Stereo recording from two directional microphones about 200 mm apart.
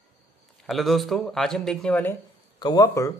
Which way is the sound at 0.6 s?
Centre (ahead or behind).